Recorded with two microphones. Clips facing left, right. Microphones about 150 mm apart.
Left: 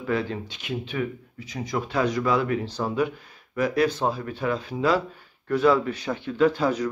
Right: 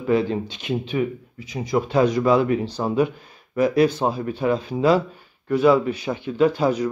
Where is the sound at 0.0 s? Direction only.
20° right (ahead or behind).